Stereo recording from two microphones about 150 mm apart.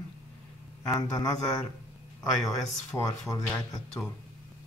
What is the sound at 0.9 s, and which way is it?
Speech, 20° left (ahead or behind).